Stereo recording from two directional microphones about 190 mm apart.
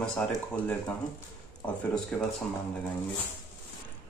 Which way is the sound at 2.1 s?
5° left (ahead or behind).